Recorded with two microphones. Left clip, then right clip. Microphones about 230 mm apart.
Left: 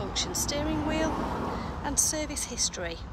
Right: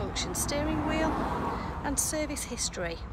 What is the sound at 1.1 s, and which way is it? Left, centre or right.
Speech, centre.